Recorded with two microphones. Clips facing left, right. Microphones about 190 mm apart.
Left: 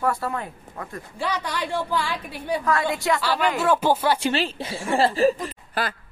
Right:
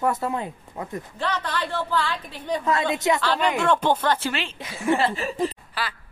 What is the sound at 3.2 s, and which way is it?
A woman's voice, 5° left (ahead or behind).